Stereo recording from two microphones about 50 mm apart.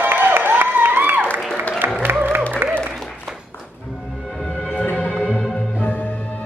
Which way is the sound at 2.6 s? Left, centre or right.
Right.